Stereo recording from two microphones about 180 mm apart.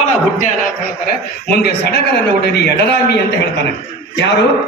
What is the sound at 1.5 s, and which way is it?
A man's voice, 60° left (ahead or behind).